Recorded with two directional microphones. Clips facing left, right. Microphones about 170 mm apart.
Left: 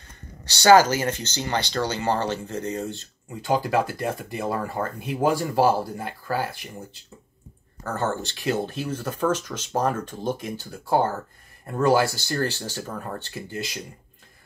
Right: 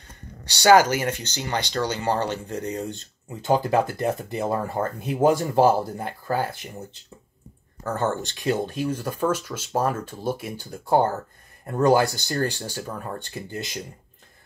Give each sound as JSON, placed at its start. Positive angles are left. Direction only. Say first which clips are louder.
{"t": 0.5, "sound": "speech", "louder": "left 1 dB", "side_deg": -15}
{"t": 7.9, "sound": "speech", "louder": "right 1 dB", "side_deg": -15}